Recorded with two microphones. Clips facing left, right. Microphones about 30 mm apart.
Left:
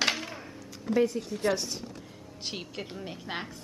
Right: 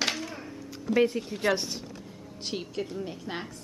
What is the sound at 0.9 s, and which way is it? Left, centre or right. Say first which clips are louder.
Speech: right 2 dB; right.